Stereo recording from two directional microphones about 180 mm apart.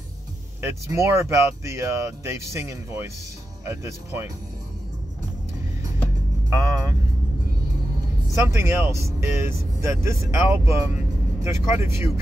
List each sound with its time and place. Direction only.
0.6 s speech: 15° right (ahead or behind)
6.5 s speech: 15° right (ahead or behind)
8.4 s speech: 15° right (ahead or behind)